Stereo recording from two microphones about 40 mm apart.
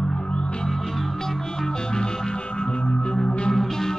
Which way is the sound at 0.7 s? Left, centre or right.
Centre.